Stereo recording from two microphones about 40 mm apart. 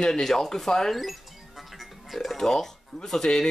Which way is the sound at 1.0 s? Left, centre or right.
Centre.